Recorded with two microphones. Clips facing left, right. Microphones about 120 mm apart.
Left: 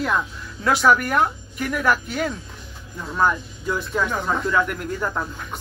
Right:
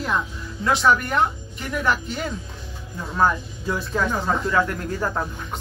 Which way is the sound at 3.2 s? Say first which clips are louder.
Even; 30° right (ahead or behind).